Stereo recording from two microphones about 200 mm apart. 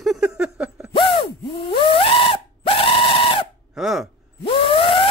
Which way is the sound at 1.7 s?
25° left (ahead or behind).